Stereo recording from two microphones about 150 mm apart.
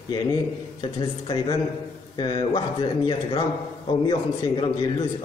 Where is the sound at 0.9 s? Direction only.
30° left (ahead or behind).